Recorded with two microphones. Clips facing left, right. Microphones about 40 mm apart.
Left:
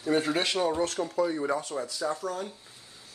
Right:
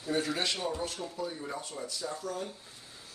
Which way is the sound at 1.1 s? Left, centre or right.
Left.